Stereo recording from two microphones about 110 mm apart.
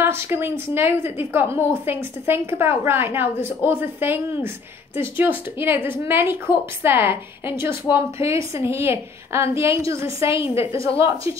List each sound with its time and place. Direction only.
0.0 s a woman's voice: 20° right (ahead or behind)
5.6 s a woman's voice: 20° right (ahead or behind)